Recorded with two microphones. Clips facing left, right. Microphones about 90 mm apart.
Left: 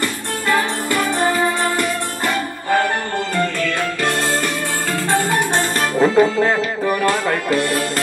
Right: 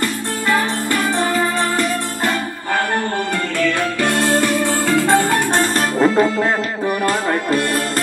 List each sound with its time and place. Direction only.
4.8 s music: 80° right; by 5.4 s 65° right (ahead or behind)
5.5 s music: 45° right (ahead or behind)
7.5 s music: 40° right (ahead or behind)